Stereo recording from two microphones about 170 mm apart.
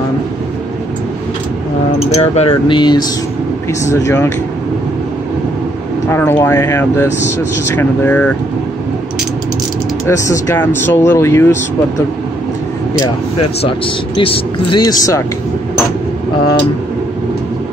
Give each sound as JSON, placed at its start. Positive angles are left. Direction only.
{"t": 2.0, "sound": "speech", "side_deg": 40}
{"t": 2.7, "sound": "speech", "side_deg": 25}
{"t": 6.0, "sound": "speech", "side_deg": 15}
{"t": 10.5, "sound": "speech", "side_deg": 15}
{"t": 13.7, "sound": "speech", "side_deg": 30}